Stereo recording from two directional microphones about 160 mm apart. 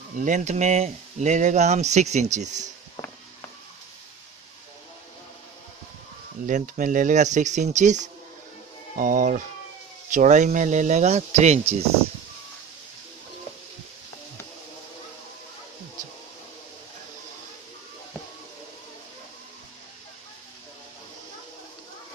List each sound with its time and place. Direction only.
0.2 s speech: 50° right (ahead or behind)
6.4 s speech: 55° right (ahead or behind)